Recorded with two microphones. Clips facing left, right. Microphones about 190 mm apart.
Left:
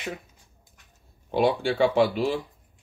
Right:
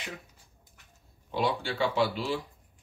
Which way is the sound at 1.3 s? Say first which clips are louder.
Left 7 dB; 55° left (ahead or behind).